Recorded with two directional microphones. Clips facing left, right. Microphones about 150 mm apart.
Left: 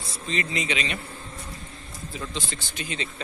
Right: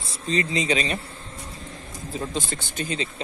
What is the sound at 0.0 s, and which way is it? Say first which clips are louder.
Speech: right 4 dB; 30° right (ahead or behind).